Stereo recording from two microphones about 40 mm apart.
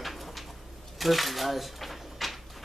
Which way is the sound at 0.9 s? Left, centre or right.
Centre.